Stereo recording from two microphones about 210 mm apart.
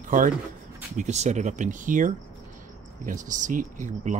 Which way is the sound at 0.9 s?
35° right (ahead or behind).